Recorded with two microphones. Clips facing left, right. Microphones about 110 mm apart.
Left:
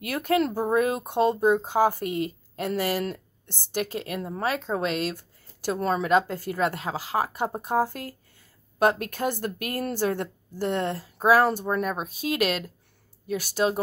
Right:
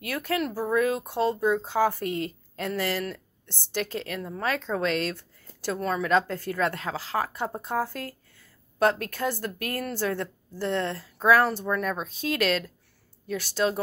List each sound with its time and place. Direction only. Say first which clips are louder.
0.0 s speech: left 4 dB; 20° left (ahead or behind)
4.2 s speech: left 2 dB; 25° left (ahead or behind)
4.5 s speech: even; 10° left (ahead or behind)
6.0 s speech: even; 15° left (ahead or behind)